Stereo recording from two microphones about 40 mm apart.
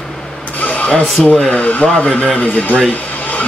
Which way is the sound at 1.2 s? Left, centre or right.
Centre.